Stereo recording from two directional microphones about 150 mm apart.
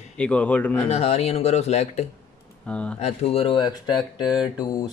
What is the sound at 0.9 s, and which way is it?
A man's voice, 45° left (ahead or behind).